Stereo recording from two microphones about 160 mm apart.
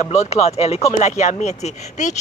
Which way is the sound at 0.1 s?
40° left (ahead or behind).